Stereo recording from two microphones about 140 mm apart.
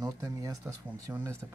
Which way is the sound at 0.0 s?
25° right (ahead or behind).